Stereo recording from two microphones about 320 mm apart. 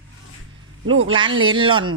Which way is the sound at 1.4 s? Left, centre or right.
Centre.